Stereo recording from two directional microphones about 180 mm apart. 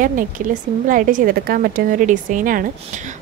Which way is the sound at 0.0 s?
50° right (ahead or behind).